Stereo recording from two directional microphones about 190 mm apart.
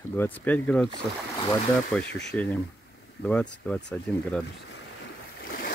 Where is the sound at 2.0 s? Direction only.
65° left (ahead or behind).